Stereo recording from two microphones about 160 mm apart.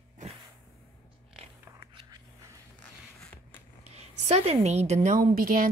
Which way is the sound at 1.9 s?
25° right (ahead or behind).